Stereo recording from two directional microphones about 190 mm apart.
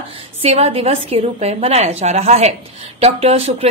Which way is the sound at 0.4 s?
30° right (ahead or behind).